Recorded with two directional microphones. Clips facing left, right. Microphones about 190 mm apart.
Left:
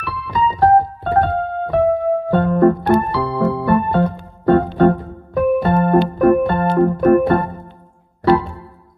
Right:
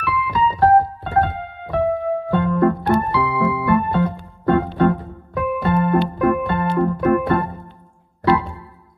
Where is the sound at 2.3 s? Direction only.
40° left (ahead or behind).